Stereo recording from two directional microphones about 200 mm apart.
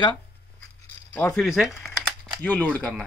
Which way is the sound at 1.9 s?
5° left (ahead or behind).